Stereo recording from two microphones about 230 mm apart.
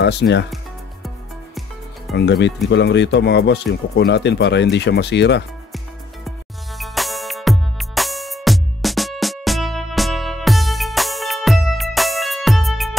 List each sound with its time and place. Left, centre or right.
0.0 s speech: left
2.1 s speech: left
6.2 s music: centre